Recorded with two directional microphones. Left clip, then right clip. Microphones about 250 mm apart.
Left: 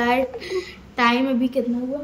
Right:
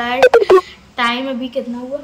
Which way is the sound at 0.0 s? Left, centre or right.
Centre.